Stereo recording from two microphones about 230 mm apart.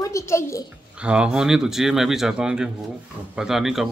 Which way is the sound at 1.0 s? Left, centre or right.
Centre.